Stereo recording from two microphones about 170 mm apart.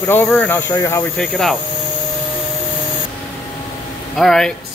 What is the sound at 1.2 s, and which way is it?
Speech, 5° left (ahead or behind).